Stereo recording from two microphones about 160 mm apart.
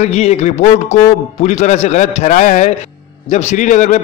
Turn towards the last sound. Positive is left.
turn(degrees=50)  # may be behind; listen again after turning